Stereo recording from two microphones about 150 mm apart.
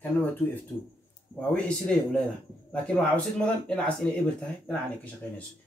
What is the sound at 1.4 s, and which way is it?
Speech, 5° left (ahead or behind).